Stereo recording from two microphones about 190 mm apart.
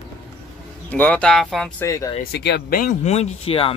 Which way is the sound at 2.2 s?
60° left (ahead or behind).